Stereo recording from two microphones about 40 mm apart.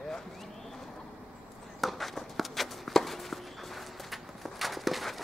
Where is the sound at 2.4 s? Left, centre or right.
Centre.